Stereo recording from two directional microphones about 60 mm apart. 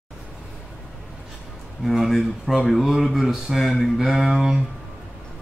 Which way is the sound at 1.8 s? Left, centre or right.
Centre.